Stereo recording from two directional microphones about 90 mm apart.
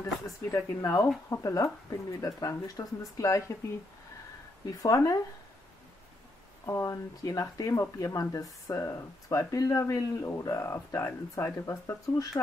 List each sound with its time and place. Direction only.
0.0 s speech: 30° left (ahead or behind)
4.6 s speech: 40° left (ahead or behind)
6.6 s speech: 35° left (ahead or behind)